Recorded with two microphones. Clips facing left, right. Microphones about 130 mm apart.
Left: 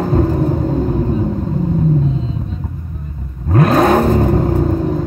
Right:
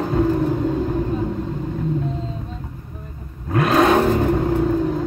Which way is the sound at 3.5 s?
40° left (ahead or behind).